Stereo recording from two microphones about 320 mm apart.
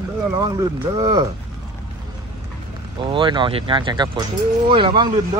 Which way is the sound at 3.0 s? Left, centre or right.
Centre.